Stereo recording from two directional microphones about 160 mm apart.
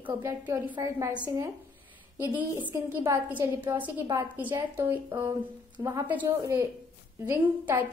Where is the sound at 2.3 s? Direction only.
10° right (ahead or behind).